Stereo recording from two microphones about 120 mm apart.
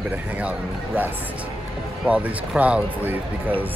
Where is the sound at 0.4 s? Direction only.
15° right (ahead or behind).